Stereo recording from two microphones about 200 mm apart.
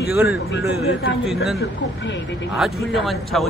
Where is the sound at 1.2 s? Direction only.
Centre (ahead or behind).